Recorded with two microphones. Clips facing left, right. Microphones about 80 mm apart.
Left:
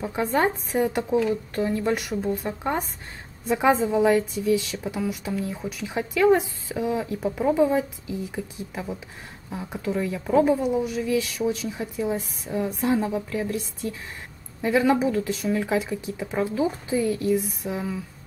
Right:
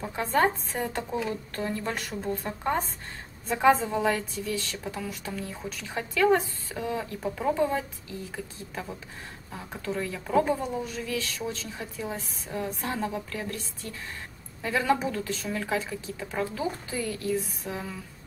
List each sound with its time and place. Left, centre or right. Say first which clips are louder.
0.0 s a woman's voice: left 2 dB; centre